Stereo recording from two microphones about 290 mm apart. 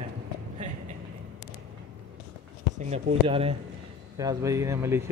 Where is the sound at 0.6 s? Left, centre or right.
Right.